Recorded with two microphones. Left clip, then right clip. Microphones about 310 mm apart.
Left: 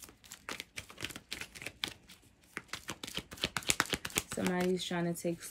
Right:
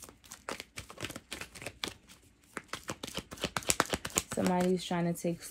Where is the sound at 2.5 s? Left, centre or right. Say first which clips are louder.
Right 2 dB; centre.